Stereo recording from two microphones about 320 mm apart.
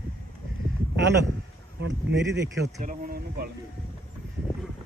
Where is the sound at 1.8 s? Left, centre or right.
Right.